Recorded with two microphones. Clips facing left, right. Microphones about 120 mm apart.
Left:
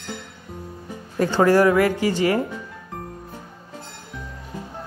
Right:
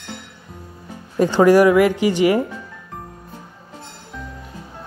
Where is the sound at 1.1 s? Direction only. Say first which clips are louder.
Right 4 dB; 20° right (ahead or behind).